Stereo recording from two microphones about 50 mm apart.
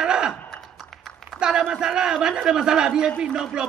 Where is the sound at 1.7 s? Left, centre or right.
Centre.